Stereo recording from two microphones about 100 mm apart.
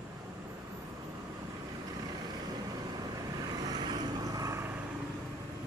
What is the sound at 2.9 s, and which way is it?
Vehicle, 40° right (ahead or behind).